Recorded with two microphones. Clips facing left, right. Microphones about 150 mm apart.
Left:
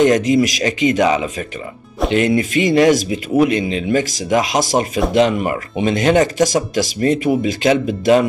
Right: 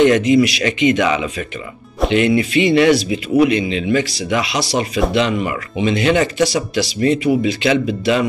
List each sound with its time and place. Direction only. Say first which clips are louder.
0.0 s speech: right 1 dB; 40° left (ahead or behind)